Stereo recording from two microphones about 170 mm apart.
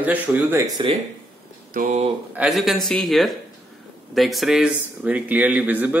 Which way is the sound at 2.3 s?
5° right (ahead or behind).